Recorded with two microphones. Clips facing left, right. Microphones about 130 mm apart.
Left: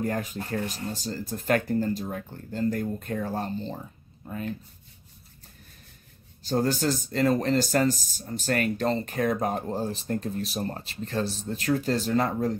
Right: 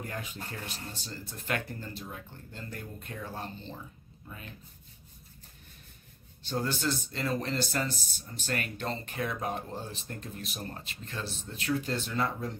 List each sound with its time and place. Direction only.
0.0 s speech: 40° left (ahead or behind)
6.4 s speech: 40° left (ahead or behind)